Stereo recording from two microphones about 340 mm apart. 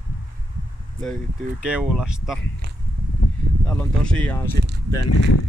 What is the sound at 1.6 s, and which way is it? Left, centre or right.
Speech, centre.